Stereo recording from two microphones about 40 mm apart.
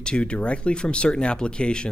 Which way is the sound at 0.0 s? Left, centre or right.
Left.